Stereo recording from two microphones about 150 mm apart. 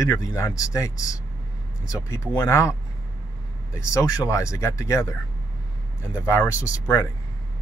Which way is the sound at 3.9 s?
20° left (ahead or behind).